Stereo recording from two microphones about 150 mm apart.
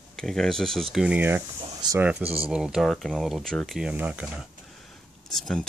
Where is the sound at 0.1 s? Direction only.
5° left (ahead or behind).